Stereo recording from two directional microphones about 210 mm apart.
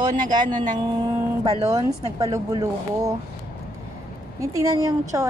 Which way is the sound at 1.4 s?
25° right (ahead or behind).